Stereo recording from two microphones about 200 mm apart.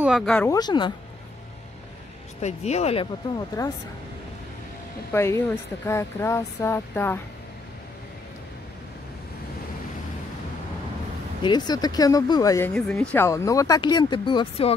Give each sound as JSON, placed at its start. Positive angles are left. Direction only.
{"t": 0.0, "sound": "speech", "side_deg": 0}
{"t": 0.5, "sound": "speech", "side_deg": 20}
{"t": 2.4, "sound": "speech", "side_deg": 35}
{"t": 3.3, "sound": "speech", "side_deg": 15}
{"t": 5.1, "sound": "speech", "side_deg": 15}
{"t": 11.4, "sound": "speech", "side_deg": 20}